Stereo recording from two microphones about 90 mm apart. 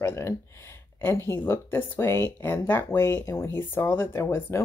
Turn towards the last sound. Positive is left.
turn(degrees=25)  # may be behind; listen again after turning